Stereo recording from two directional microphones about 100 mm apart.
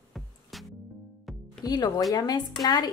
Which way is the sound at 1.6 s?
40° left (ahead or behind).